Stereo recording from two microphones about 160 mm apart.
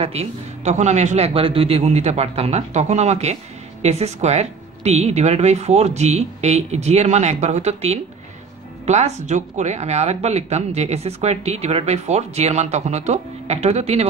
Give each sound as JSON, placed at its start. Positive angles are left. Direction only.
{"t": 0.0, "sound": "speech", "side_deg": -40}